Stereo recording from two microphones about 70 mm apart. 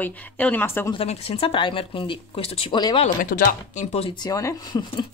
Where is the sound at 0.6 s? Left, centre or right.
Left.